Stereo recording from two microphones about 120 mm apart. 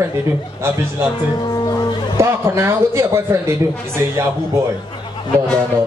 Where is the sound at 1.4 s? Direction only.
35° left (ahead or behind).